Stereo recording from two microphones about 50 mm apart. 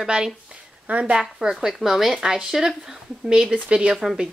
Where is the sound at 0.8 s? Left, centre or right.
Right.